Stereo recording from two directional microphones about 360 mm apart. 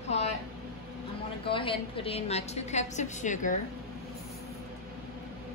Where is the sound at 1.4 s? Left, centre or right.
Centre.